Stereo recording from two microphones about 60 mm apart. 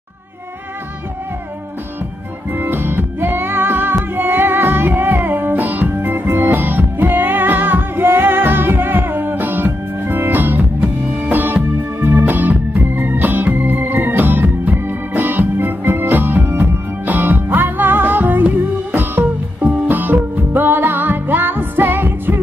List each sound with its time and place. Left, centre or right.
2.5 s music: right
14.7 s organ: right
16.4 s music: right